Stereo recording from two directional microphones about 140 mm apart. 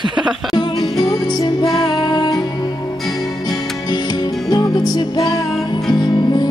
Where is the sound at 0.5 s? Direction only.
30° left (ahead or behind).